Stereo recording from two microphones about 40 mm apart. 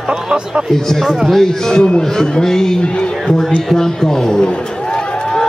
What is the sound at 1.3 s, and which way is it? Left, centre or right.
A man's voice, centre.